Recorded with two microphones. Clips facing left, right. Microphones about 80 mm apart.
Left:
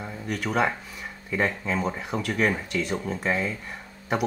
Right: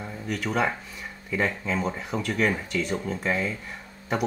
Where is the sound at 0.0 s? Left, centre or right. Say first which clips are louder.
Even; centre.